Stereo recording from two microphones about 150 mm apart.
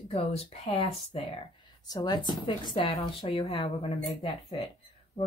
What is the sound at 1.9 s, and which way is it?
Speech, 25° left (ahead or behind).